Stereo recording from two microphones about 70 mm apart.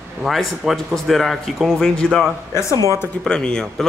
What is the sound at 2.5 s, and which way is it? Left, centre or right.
Speech, left.